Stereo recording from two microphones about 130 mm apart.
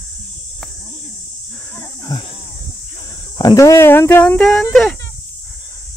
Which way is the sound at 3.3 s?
25° left (ahead or behind).